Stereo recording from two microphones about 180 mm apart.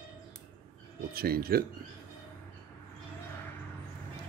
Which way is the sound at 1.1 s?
55° right (ahead or behind).